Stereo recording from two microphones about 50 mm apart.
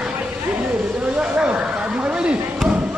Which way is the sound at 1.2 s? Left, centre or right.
Centre.